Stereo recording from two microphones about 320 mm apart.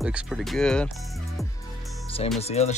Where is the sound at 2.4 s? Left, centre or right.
Centre.